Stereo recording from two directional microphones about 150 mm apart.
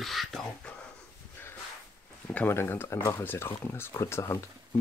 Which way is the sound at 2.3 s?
15° left (ahead or behind).